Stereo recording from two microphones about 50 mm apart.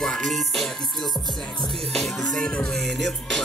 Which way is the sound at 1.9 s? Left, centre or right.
Centre.